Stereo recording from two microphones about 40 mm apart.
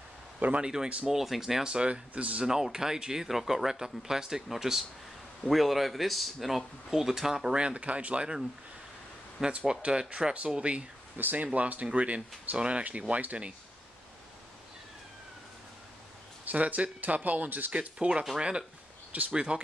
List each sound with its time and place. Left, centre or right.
0.6 s speech: centre
0.8 s speech: right
1.1 s speech: centre
2.1 s speech: right
2.4 s speech: centre
7.5 s speech: right
9.7 s speech: right
11.1 s speech: right
11.4 s speech: right
16.4 s speech: right
17.7 s speech: right